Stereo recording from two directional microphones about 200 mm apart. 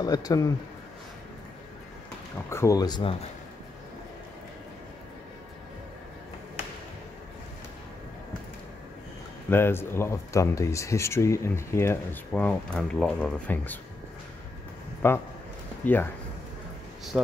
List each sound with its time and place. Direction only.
0.0 s speech: 20° left (ahead or behind)
2.5 s speech: 15° left (ahead or behind)
9.5 s speech: 10° left (ahead or behind)
15.0 s speech: 10° left (ahead or behind)
17.1 s speech: 5° right (ahead or behind)